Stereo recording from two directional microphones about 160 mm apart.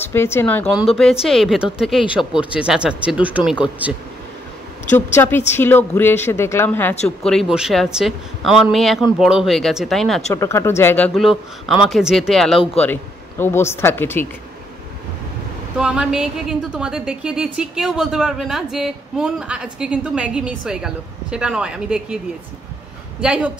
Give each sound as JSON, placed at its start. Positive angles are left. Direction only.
{"t": 0.0, "sound": "a woman's voice", "side_deg": 15}
{"t": 1.2, "sound": "a woman's voice", "side_deg": 0}
{"t": 4.9, "sound": "a woman's voice", "side_deg": 15}
{"t": 7.2, "sound": "a woman's voice", "side_deg": 0}
{"t": 10.3, "sound": "a woman's voice", "side_deg": 15}
{"t": 11.1, "sound": "a woman's voice", "side_deg": 0}
{"t": 12.8, "sound": "speech", "side_deg": 15}
{"t": 15.8, "sound": "a woman's voice", "side_deg": -5}
{"t": 23.2, "sound": "speech", "side_deg": -5}